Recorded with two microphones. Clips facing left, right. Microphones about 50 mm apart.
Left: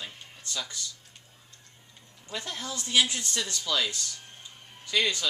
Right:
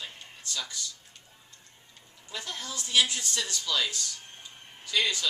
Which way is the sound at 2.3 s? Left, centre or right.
Centre.